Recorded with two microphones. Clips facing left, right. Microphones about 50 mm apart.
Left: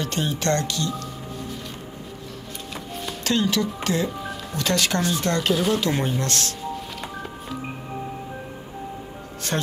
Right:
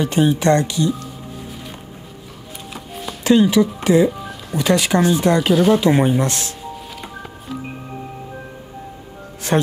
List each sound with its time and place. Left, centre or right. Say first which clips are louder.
0.0 s speech: right 9 dB; centre
2.7 s music: right 2 dB; centre
3.3 s speech: right 9 dB; centre
4.2 s music: right 2 dB; centre
4.6 s speech: right 7 dB; centre
9.5 s speech: right 9 dB; right